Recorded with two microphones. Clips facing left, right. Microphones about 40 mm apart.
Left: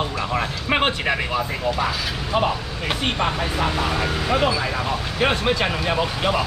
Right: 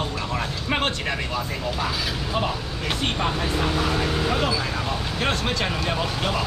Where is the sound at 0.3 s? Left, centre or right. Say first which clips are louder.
Left 4 dB; left.